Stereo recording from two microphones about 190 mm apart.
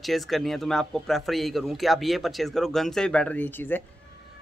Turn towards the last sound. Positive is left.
turn(degrees=10)  # may be behind; listen again after turning